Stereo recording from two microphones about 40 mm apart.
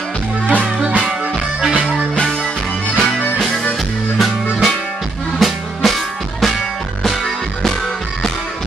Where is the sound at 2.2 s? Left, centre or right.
Centre.